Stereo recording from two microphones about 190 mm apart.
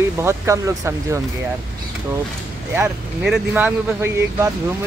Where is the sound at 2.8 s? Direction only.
5° right (ahead or behind).